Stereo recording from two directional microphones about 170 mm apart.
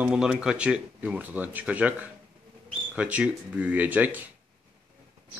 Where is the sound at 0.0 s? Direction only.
5° right (ahead or behind).